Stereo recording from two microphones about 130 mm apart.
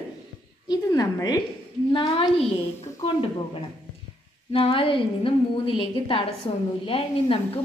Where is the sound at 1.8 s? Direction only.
40° left (ahead or behind).